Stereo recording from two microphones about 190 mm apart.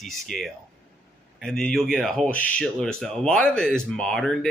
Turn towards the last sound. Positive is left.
turn(degrees=0)  # may be behind; listen again after turning